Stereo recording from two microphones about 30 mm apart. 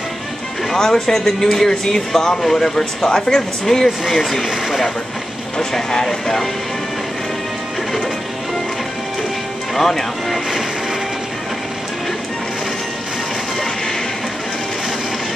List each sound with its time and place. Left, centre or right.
0.7 s speech: centre
3.3 s speech: centre
4.5 s speech: right
5.6 s speech: centre
9.8 s speech: centre